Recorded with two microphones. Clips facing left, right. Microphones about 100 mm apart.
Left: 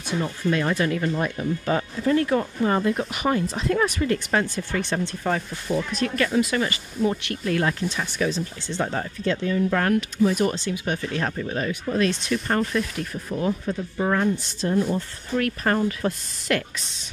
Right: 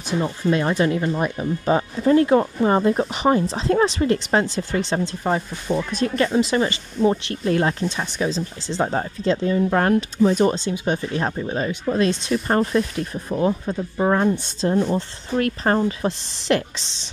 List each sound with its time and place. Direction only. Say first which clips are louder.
0.1 s speech: right 3 dB; 25° right (ahead or behind)